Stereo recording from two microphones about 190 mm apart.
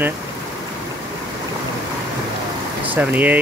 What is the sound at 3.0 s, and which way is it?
Speech, 10° right (ahead or behind).